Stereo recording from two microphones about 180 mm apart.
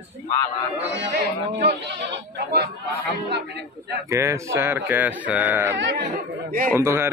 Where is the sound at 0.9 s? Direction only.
75° right (ahead or behind).